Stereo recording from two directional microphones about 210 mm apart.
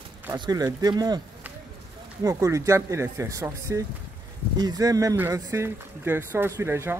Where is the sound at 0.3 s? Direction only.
20° right (ahead or behind).